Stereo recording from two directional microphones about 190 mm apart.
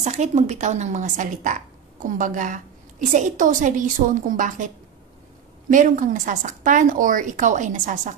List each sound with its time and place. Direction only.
0.0 s a woman's voice: 40° right (ahead or behind)